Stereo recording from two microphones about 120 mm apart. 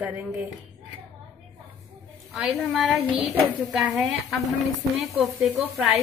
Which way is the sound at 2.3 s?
Centre (ahead or behind).